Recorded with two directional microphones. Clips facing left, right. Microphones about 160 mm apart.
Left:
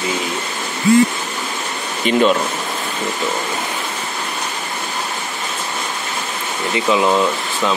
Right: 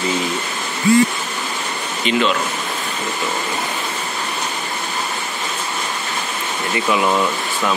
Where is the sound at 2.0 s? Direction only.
45° left (ahead or behind).